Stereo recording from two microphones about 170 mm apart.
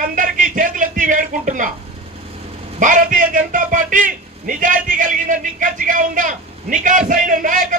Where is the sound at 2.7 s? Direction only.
50° right (ahead or behind).